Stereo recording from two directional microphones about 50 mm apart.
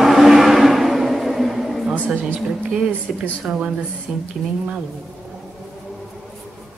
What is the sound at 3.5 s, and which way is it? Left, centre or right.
Speech, right.